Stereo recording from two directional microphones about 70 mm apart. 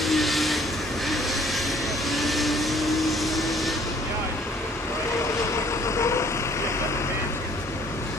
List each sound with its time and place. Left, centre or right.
0.0 s vehicle: centre
2.0 s vehicle: centre
5.9 s vehicle: left